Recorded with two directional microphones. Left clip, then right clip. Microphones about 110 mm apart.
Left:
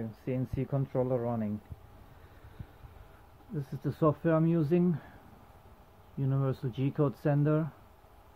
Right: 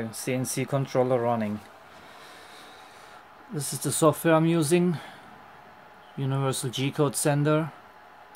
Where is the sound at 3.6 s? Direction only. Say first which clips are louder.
Right 7 dB; 5° right (ahead or behind).